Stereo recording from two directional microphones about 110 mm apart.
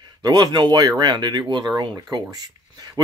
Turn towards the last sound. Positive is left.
turn(degrees=-35)  # may be behind; listen again after turning